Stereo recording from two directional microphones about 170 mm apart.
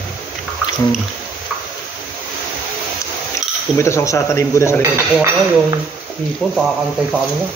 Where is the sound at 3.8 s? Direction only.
15° left (ahead or behind).